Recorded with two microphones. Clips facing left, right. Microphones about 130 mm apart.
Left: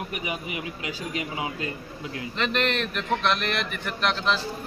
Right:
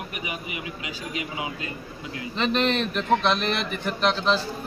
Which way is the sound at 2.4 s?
25° right (ahead or behind).